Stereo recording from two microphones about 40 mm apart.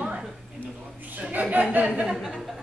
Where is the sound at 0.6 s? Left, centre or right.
Left.